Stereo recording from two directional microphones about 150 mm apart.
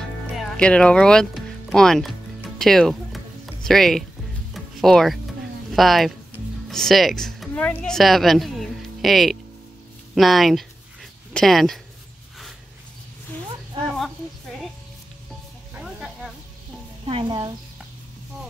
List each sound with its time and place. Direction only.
0.4 s speech: 5° left (ahead or behind)
4.6 s music: centre (ahead or behind)
5.7 s speech: centre (ahead or behind)
15.7 s snake: 5° right (ahead or behind)
17.0 s speech: 35° right (ahead or behind)